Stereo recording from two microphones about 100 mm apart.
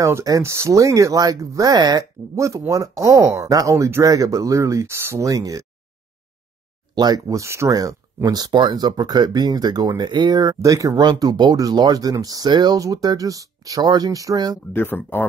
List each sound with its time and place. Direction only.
0.0 s speech: 30° right (ahead or behind)
7.0 s speech: 40° right (ahead or behind)
8.3 s speech: 45° right (ahead or behind)
14.7 s speech: 20° left (ahead or behind)